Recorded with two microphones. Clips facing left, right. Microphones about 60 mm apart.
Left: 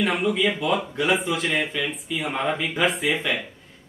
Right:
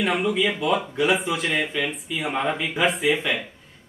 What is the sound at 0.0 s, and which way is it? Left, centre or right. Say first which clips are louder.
Speech: even; centre.